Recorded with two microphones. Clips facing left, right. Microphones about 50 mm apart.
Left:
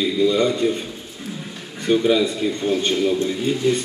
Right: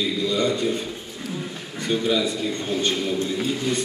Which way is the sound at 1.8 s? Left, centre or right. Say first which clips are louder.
Left 5 dB; centre.